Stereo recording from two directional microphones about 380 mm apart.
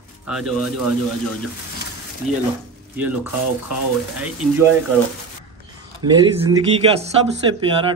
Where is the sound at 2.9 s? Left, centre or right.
Centre.